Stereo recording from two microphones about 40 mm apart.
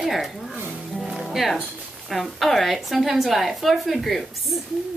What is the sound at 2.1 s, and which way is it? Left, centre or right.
A woman's voice, centre.